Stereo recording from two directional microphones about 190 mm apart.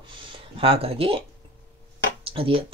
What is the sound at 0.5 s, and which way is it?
Speech, 30° right (ahead or behind).